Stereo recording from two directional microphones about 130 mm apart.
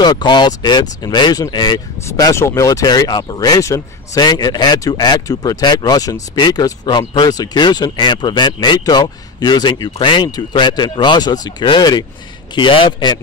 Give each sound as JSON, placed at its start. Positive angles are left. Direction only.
{"t": 0.0, "sound": "speech", "side_deg": 35}